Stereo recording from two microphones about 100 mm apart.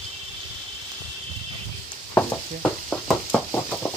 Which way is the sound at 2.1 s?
15° left (ahead or behind).